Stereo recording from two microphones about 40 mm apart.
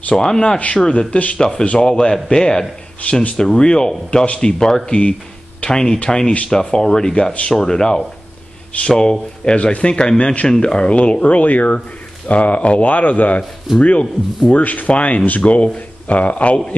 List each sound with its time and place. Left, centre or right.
0.1 s speech: centre
0.8 s speech: left
3.0 s speech: left
3.3 s speech: left
13.7 s speech: left
14.5 s speech: left